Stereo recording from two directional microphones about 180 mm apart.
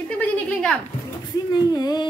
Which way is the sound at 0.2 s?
5° left (ahead or behind).